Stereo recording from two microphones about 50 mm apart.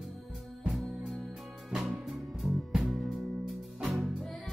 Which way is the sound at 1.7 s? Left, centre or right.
Centre.